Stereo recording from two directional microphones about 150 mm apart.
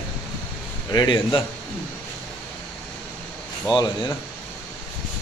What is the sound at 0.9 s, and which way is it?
Speech, 30° left (ahead or behind).